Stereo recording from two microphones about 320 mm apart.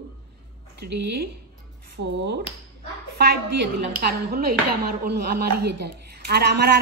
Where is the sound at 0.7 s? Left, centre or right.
Right.